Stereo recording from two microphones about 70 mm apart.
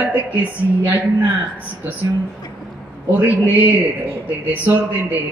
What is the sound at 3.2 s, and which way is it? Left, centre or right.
Speech, right.